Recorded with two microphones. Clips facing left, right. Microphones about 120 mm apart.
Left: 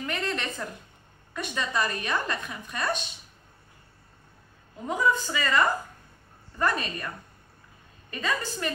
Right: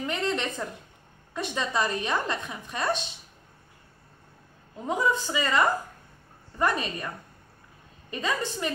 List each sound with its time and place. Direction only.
0.0 s a woman's voice: 20° right (ahead or behind)
4.8 s a woman's voice: 25° right (ahead or behind)